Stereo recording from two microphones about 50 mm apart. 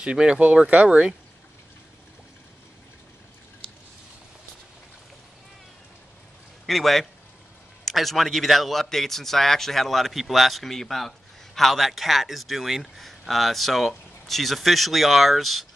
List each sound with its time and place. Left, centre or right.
0.0 s speech: centre
6.6 s a man's voice: centre